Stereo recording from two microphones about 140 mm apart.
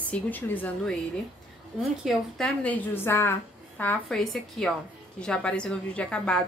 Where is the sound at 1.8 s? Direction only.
Centre (ahead or behind).